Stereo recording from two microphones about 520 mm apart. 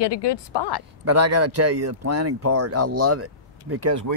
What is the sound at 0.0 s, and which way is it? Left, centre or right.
Speech, left.